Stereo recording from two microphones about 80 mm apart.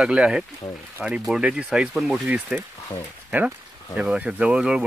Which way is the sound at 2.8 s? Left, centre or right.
Left.